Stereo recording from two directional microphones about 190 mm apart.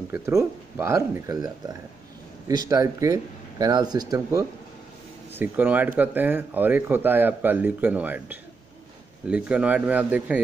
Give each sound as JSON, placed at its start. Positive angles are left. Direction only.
{"t": 0.1, "sound": "speech", "side_deg": -15}